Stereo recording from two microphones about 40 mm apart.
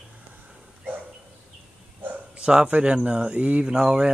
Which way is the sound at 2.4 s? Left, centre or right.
Centre.